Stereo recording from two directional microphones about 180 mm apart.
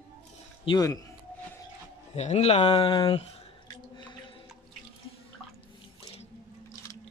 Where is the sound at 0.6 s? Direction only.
25° left (ahead or behind).